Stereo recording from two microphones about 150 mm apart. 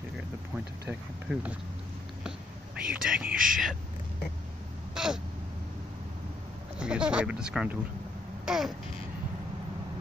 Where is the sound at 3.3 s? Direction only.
65° right (ahead or behind).